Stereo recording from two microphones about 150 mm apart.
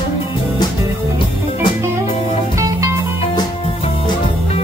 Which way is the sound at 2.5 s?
20° right (ahead or behind).